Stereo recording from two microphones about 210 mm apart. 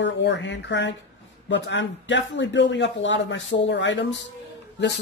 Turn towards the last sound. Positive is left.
turn(degrees=55)  # may be behind; listen again after turning